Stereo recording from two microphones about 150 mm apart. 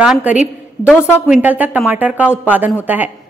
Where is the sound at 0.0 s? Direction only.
10° right (ahead or behind).